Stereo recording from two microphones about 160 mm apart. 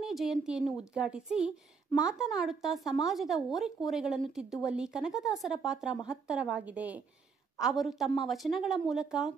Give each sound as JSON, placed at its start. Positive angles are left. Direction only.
{"t": 0.0, "sound": "a woman's voice", "side_deg": 0}